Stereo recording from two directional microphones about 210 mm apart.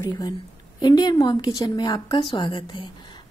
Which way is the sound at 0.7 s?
20° left (ahead or behind).